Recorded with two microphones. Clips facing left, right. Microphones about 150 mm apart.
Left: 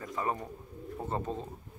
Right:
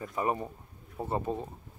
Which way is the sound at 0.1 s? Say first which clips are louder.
Right 3 dB; 15° right (ahead or behind).